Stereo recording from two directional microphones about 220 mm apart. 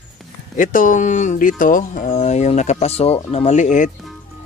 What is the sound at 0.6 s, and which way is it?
Speech, 35° left (ahead or behind).